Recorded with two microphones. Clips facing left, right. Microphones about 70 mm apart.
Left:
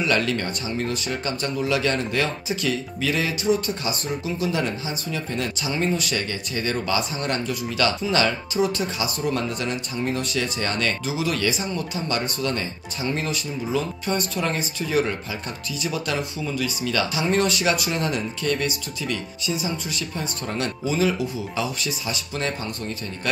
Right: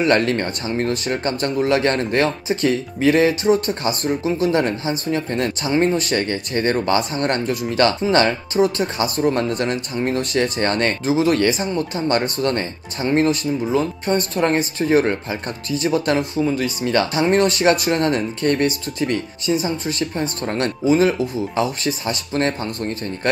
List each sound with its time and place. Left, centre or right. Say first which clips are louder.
0.0 s speech: right 6 dB; right